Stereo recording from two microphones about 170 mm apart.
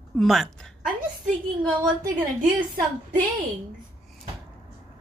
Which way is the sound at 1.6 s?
20° right (ahead or behind).